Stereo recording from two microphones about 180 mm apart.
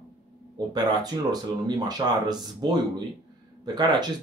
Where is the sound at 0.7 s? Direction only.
20° right (ahead or behind).